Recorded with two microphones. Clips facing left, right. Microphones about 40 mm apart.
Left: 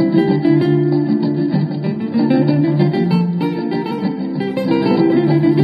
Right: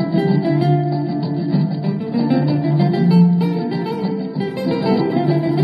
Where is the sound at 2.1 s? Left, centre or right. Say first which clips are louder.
Left 4 dB; centre.